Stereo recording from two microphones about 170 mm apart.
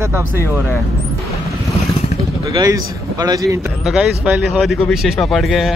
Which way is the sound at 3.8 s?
5° right (ahead or behind).